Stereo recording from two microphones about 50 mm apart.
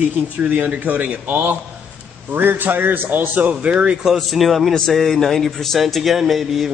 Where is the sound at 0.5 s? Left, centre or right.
Right.